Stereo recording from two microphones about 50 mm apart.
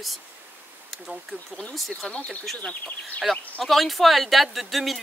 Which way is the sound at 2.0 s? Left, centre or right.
Centre.